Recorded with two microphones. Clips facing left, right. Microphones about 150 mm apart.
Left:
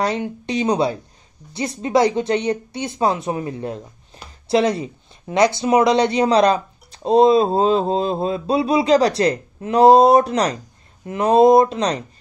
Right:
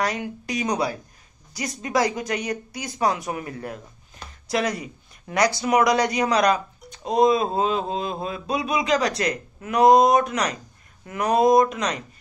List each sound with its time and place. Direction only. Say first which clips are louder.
0.0 s speech: left 4 dB; 30° left (ahead or behind)